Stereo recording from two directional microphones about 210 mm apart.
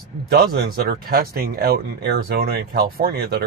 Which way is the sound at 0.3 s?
45° right (ahead or behind).